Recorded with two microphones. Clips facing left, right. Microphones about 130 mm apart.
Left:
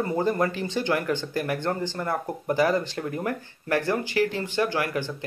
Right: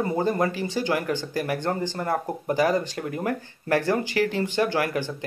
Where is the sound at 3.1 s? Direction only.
30° right (ahead or behind).